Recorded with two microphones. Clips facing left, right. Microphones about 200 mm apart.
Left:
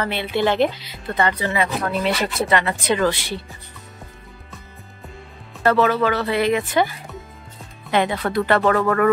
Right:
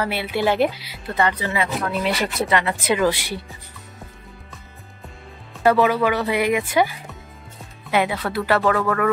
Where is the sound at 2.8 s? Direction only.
10° right (ahead or behind).